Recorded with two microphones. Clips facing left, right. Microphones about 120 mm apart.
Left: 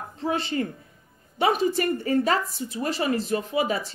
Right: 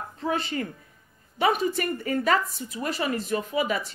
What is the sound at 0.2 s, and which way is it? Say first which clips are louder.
A woman's voice: left 2 dB; 30° left (ahead or behind).